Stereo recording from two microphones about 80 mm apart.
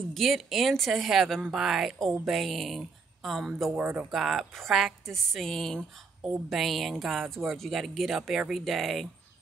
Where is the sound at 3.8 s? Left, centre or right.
Centre.